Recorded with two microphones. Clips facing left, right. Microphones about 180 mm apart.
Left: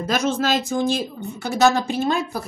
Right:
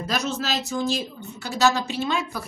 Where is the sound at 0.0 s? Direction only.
50° left (ahead or behind).